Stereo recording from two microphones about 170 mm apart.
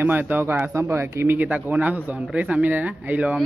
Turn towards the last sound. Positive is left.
turn(degrees=-10)  # may be behind; listen again after turning